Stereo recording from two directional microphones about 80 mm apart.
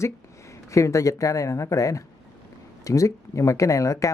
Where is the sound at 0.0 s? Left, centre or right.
Left.